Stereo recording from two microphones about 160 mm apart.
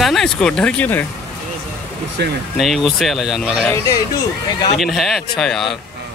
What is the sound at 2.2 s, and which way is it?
Speech, 90° right.